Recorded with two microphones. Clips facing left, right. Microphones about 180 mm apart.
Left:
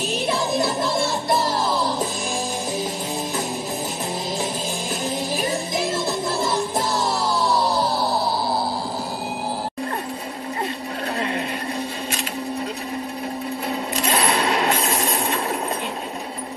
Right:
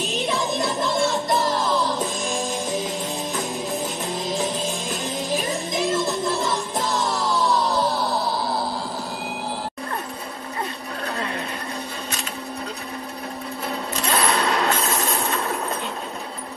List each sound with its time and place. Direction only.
0.6 s music: 5° left (ahead or behind)
5.3 s music: 5° left (ahead or behind)
14.0 s a sound: 20° left (ahead or behind)